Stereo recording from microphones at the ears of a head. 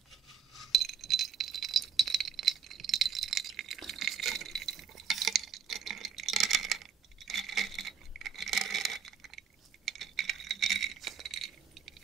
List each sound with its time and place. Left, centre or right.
0.7 s rattle: right